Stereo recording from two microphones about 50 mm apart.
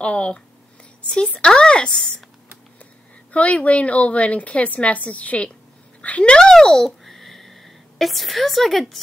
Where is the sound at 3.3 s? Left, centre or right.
Left.